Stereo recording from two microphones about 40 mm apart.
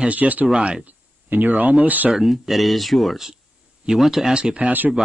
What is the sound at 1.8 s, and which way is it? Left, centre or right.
Speech, right.